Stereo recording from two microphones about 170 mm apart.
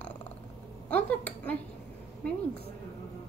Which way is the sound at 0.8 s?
10° left (ahead or behind).